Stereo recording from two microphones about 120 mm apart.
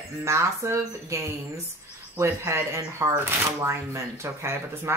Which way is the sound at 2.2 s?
25° right (ahead or behind).